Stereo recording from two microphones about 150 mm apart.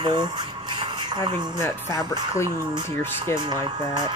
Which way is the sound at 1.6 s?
20° left (ahead or behind).